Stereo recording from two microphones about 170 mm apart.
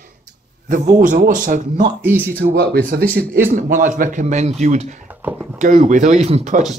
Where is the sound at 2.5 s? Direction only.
65° right (ahead or behind).